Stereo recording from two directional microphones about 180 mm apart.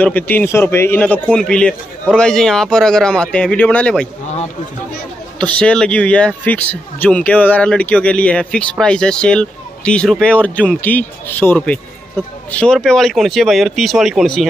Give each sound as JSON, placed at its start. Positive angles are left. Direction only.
{"t": 0.0, "sound": "speech", "side_deg": 10}
{"t": 5.4, "sound": "speech", "side_deg": 5}